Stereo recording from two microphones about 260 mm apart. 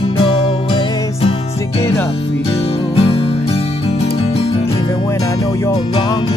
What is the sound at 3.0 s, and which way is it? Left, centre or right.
Music, left.